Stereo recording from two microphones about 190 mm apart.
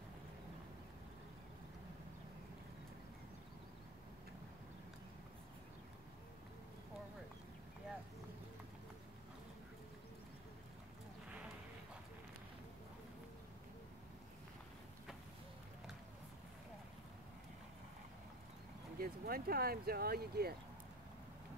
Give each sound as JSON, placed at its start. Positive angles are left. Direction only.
{"t": 18.9, "sound": "speech", "side_deg": -50}